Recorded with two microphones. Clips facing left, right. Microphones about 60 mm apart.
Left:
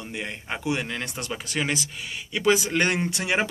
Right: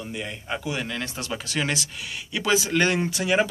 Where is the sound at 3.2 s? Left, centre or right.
Left.